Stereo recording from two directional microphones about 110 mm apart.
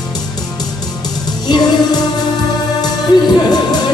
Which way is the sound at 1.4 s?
40° left (ahead or behind).